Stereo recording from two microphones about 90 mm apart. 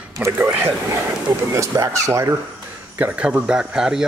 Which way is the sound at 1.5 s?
35° right (ahead or behind).